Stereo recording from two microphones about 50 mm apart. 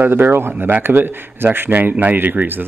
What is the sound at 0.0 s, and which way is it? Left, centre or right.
Speech, right.